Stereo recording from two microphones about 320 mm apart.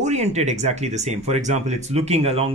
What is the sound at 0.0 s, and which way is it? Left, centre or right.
Speech, right.